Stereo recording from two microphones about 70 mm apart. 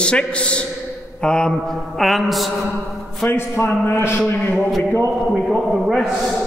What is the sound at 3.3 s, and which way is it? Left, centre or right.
Speech, left.